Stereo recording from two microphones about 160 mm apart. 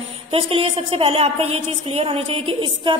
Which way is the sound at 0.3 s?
35° right (ahead or behind).